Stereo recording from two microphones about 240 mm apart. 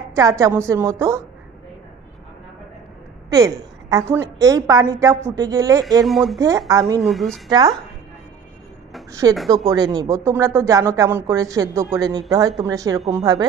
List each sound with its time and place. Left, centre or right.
0.1 s speech: centre
3.3 s a woman's voice: centre
6.0 s speech: centre
6.7 s speech: centre
7.0 s speech: centre
7.4 s speech: centre
9.2 s speech: centre